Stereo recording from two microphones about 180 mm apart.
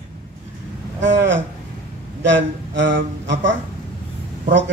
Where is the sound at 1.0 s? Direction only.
85° right.